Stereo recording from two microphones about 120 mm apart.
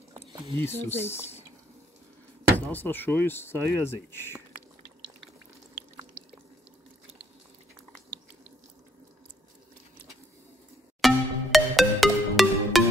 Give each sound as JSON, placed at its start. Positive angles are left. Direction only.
{"t": 0.1, "sound": "a sound", "side_deg": -35}
{"t": 0.7, "sound": "speech", "side_deg": 20}
{"t": 2.6, "sound": "speech", "side_deg": 15}
{"t": 11.0, "sound": "music", "side_deg": 0}